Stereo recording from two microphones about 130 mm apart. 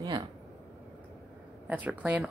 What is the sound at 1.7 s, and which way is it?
Speech, 10° right (ahead or behind).